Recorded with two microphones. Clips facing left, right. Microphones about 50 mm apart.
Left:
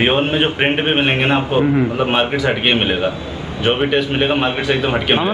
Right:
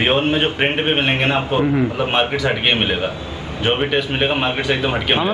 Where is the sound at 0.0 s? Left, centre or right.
Centre.